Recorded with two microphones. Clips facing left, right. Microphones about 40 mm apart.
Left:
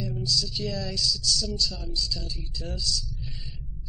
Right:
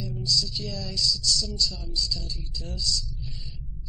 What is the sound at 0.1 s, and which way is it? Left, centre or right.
A man's voice, left.